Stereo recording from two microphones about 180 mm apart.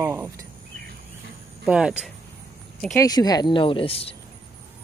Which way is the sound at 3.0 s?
20° left (ahead or behind).